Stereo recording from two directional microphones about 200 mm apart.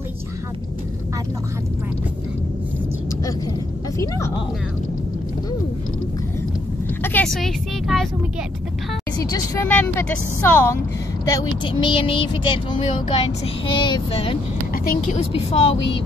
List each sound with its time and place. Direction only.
7.0 s speech: 10° left (ahead or behind)
9.2 s a woman's voice: 15° left (ahead or behind)
14.9 s a woman's voice: 40° left (ahead or behind)